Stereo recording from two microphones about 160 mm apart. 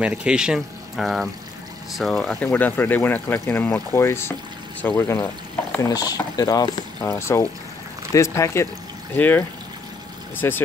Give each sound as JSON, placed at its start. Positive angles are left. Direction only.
{"t": 0.0, "sound": "speech", "side_deg": -5}